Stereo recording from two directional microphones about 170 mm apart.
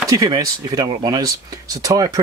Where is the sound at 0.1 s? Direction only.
20° right (ahead or behind).